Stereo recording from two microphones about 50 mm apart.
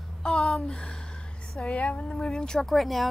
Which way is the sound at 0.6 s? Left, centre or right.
Centre.